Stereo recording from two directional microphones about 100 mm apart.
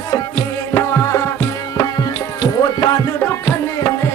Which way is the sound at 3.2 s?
20° left (ahead or behind).